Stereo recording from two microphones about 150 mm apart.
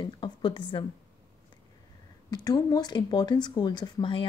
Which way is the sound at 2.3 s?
25° left (ahead or behind).